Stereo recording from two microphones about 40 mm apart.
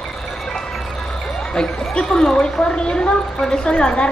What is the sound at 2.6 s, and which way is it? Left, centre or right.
A woman's voice, left.